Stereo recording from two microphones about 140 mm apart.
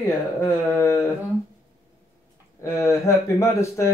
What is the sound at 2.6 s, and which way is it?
Speech, 20° left (ahead or behind).